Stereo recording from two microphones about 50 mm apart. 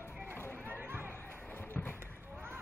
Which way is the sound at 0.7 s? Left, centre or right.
Right.